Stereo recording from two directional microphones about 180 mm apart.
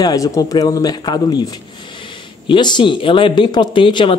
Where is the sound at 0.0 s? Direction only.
20° left (ahead or behind).